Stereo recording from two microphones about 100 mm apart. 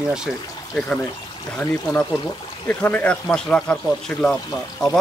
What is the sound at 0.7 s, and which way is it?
Speech, centre (ahead or behind).